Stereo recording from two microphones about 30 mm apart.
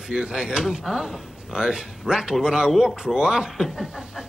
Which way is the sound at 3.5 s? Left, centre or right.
Centre.